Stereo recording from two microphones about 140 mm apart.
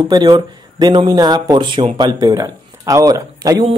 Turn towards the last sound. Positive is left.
turn(degrees=-25)  # may be behind; listen again after turning